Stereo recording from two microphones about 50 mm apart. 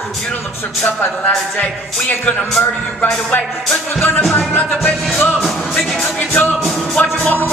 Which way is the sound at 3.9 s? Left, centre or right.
Left.